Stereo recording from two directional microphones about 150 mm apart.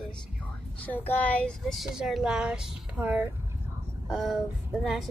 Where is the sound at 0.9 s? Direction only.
10° left (ahead or behind).